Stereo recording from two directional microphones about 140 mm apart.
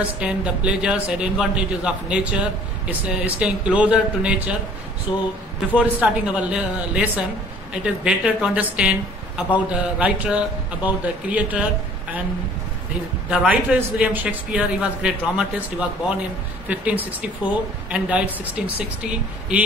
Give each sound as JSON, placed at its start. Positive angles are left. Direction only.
{"t": 0.2, "sound": "speech", "side_deg": -10}
{"t": 5.1, "sound": "speech", "side_deg": 40}
{"t": 5.8, "sound": "speech", "side_deg": -10}
{"t": 13.3, "sound": "speech", "side_deg": -10}